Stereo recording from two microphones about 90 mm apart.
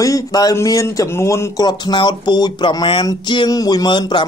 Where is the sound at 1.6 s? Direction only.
50° left (ahead or behind).